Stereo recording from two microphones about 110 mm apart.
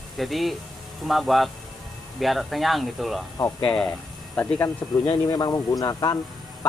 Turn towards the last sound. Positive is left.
turn(degrees=35)  # may be behind; listen again after turning